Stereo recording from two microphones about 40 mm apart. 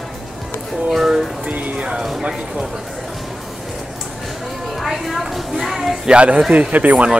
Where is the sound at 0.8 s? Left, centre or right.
Centre.